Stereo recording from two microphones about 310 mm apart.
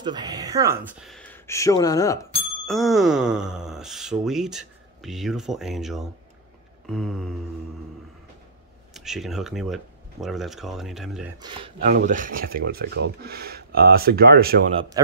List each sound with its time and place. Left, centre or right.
0.0 s speech: centre
8.9 s speech: centre
11.3 s speech: centre